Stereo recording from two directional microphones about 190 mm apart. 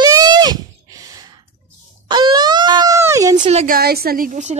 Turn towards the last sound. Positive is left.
turn(degrees=-40)  # may be behind; listen again after turning